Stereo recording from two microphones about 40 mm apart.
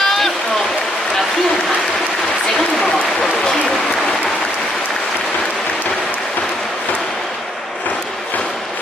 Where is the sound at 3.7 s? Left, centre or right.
Centre.